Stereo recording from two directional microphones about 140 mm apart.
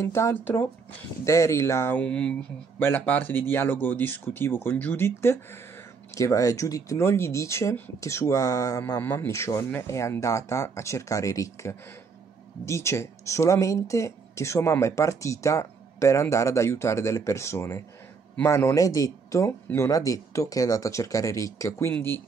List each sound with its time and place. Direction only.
0.0 s speech: 20° left (ahead or behind)
9.0 s speech: 15° left (ahead or behind)